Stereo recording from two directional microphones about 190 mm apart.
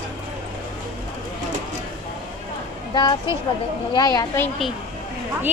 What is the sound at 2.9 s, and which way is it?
Speech, 25° left (ahead or behind).